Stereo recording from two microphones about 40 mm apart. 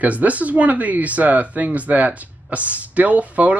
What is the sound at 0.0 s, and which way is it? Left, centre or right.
Speech, right.